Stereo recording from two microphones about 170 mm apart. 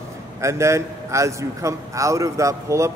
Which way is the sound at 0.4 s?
15° right (ahead or behind).